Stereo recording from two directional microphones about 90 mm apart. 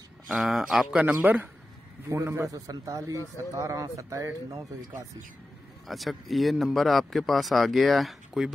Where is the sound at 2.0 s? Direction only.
35° right (ahead or behind).